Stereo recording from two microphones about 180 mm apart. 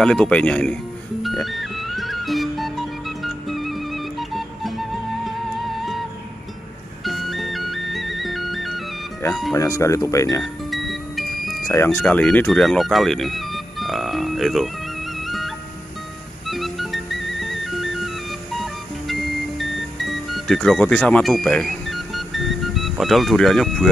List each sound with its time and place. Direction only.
0.0 s speech: 5° left (ahead or behind)
1.2 s music: centre (ahead or behind)
7.1 s music: centre (ahead or behind)
9.3 s speech: centre (ahead or behind)
9.6 s speech: 15° left (ahead or behind)
10.4 s music: centre (ahead or behind)
11.7 s speech: 15° left (ahead or behind)
15.2 s music: centre (ahead or behind)